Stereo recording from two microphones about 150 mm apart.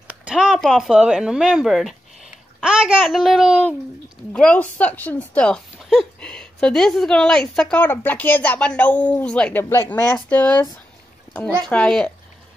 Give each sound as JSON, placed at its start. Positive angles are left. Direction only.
{"t": 0.2, "sound": "a child's voice", "side_deg": -5}
{"t": 4.3, "sound": "a woman's voice", "side_deg": 10}
{"t": 11.6, "sound": "a child's voice", "side_deg": 5}